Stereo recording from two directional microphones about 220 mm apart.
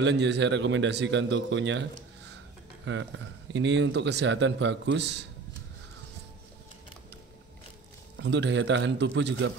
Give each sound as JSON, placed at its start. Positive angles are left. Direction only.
{"t": 0.0, "sound": "a man's voice", "side_deg": -50}
{"t": 8.2, "sound": "speech", "side_deg": -55}